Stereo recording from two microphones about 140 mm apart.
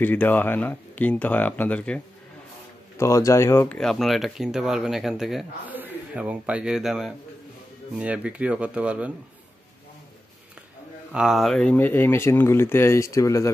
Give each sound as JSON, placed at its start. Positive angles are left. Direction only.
{"t": 0.0, "sound": "speech", "side_deg": 15}
{"t": 3.0, "sound": "speech", "side_deg": 20}
{"t": 3.7, "sound": "a man's voice", "side_deg": 5}
{"t": 11.1, "sound": "speech", "side_deg": -5}